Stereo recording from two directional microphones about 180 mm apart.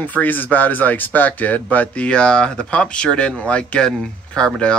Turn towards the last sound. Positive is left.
turn(degrees=5)  # may be behind; listen again after turning